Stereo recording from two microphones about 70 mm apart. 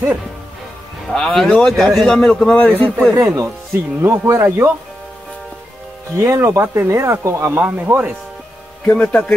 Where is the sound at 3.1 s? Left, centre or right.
Right.